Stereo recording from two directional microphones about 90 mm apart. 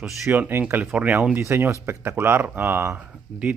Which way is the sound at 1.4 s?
30° right (ahead or behind).